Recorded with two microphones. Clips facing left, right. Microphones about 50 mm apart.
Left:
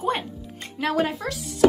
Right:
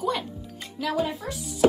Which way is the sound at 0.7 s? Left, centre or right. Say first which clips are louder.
Left 3 dB; left.